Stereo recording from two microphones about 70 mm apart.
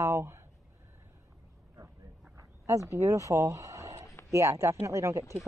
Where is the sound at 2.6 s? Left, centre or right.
Right.